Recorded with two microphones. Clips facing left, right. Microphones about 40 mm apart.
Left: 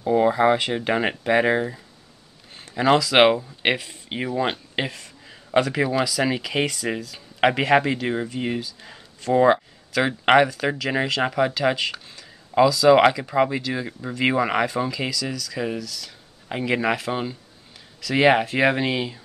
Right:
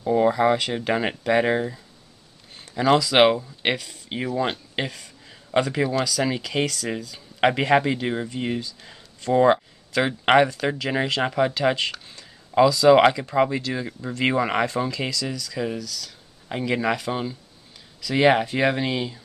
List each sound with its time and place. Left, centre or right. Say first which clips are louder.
0.0 s speech: left 1 dB; centre
0.3 s speech: left 1 dB; left
2.5 s a sound: left 1 dB; centre
3.1 s speech: left 1 dB; centre
7.0 s speech: even; centre